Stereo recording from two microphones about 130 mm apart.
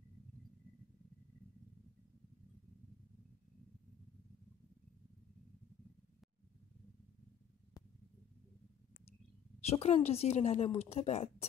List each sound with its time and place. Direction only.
9.6 s a woman's voice: 50° left (ahead or behind)